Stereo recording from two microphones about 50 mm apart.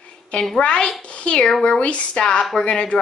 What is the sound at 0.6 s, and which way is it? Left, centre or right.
A child's voice, centre.